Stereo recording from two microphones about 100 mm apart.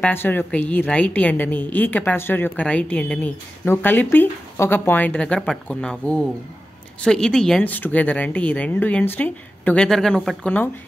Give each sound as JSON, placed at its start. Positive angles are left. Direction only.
{"t": 0.0, "sound": "a woman's voice", "side_deg": 20}
{"t": 9.8, "sound": "speech", "side_deg": 5}